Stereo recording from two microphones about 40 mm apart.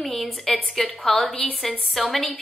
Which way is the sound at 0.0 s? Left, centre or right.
Centre.